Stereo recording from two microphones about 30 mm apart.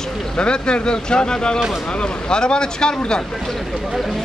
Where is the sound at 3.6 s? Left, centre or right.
Centre.